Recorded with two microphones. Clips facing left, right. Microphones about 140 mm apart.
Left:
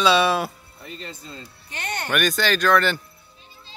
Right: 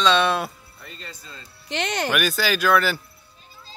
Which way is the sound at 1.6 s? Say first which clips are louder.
Right 6 dB; 90° right.